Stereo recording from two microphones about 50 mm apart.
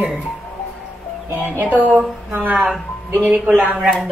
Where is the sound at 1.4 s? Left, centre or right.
Right.